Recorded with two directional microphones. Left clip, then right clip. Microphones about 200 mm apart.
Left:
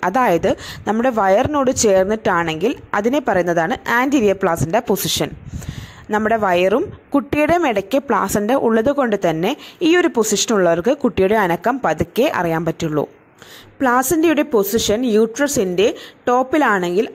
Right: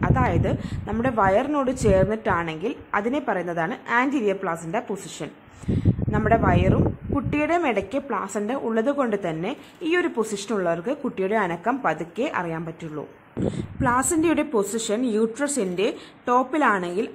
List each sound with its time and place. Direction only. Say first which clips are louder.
0.0 s speech: left 8 dB; 40° left (ahead or behind)